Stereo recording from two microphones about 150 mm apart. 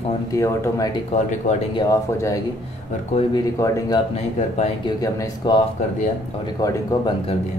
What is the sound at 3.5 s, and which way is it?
Speech, 20° left (ahead or behind).